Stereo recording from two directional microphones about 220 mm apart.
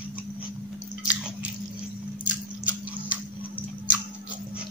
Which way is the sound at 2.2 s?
5° right (ahead or behind).